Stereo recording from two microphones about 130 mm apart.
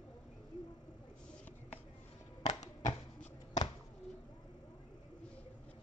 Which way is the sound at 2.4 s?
65° left (ahead or behind).